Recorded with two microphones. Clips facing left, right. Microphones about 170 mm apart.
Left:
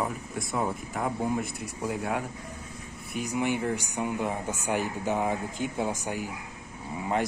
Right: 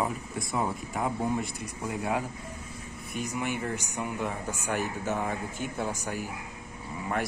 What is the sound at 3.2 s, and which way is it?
Speech, 15° left (ahead or behind).